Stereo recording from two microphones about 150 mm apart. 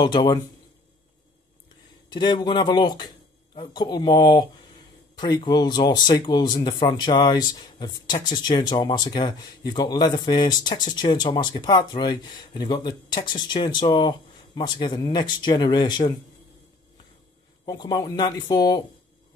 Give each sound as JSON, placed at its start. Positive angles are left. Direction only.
{"t": 0.0, "sound": "speech", "side_deg": 30}
{"t": 2.1, "sound": "speech", "side_deg": 30}
{"t": 17.6, "sound": "speech", "side_deg": 25}